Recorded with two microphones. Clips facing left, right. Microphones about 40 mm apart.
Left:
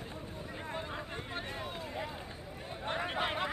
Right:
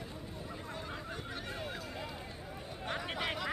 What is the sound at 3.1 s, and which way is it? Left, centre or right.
Chatter, left.